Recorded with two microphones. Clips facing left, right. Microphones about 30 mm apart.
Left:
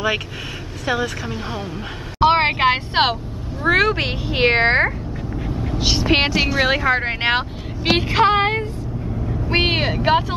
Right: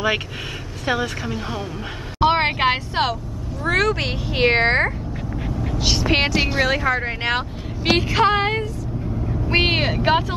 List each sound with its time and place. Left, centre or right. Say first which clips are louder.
0.8 s a woman's voice: left 1 dB; centre
2.1 s a sound: left 2 dB; centre
2.9 s speech: left 4 dB; left
3.6 s speech: left 3 dB; left; by 4.9 s centre
5.6 s vehicle: left 1 dB; centre
6.6 s speech: left 3 dB; left
9.3 s speech: even; centre